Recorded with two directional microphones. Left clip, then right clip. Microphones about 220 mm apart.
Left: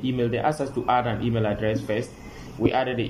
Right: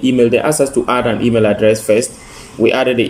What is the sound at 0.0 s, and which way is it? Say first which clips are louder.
A man's voice: right 12 dB; 50° right (ahead or behind).